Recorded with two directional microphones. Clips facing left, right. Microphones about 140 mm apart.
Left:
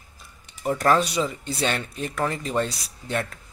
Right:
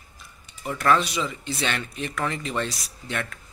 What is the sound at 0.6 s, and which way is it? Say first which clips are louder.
Speech: left 2 dB; 35° left (ahead or behind).